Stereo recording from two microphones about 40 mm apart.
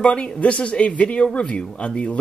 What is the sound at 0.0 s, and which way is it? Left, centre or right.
Speech, left.